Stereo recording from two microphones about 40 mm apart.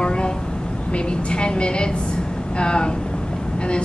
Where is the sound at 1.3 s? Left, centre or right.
Left.